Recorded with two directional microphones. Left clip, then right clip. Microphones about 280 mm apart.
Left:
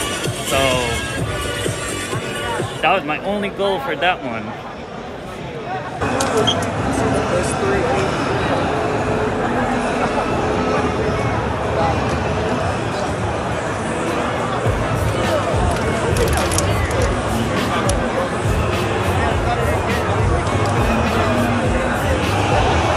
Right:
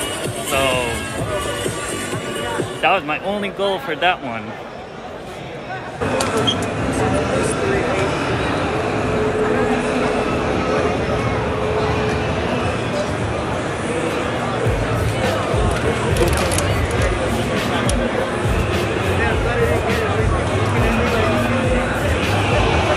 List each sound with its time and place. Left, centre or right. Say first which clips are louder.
0.5 s speech: left 1 dB; centre
2.8 s speech: even; centre